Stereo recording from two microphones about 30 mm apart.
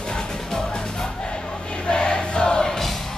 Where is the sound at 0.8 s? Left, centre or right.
Left.